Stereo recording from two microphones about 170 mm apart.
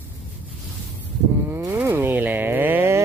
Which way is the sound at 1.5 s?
15° right (ahead or behind).